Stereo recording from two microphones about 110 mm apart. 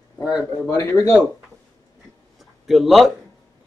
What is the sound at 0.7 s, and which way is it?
Speech, 30° left (ahead or behind).